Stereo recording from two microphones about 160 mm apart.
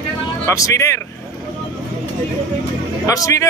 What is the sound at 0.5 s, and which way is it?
Speech, 20° left (ahead or behind).